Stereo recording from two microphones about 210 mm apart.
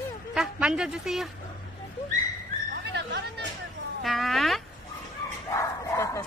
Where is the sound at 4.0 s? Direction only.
Centre (ahead or behind).